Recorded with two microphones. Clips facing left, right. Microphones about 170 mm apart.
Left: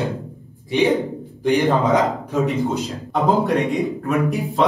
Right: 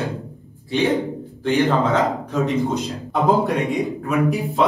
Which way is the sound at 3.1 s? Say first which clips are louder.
Even; centre (ahead or behind).